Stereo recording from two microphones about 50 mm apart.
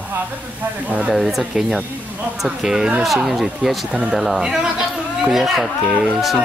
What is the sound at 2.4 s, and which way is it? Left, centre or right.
Speech, centre.